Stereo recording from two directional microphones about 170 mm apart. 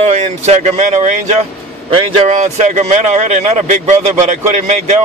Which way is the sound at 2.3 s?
50° right (ahead or behind).